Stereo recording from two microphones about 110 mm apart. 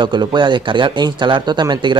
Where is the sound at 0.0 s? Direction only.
45° right (ahead or behind).